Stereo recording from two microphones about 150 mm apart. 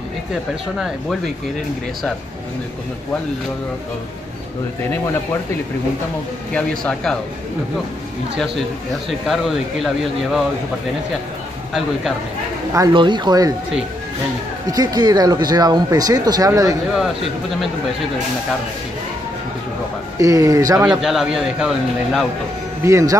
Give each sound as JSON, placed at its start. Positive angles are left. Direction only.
{"t": 0.3, "sound": "a man's voice", "side_deg": 0}
{"t": 6.5, "sound": "a man's voice", "side_deg": 5}
{"t": 9.3, "sound": "a man's voice", "side_deg": 0}
{"t": 12.9, "sound": "speech", "side_deg": -30}
{"t": 14.7, "sound": "speech", "side_deg": -25}
{"t": 20.2, "sound": "speech", "side_deg": -20}
{"t": 20.8, "sound": "a man's voice", "side_deg": -5}
{"t": 22.8, "sound": "speech", "side_deg": -20}